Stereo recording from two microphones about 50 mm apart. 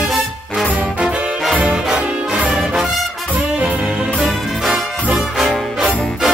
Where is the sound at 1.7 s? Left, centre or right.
Centre.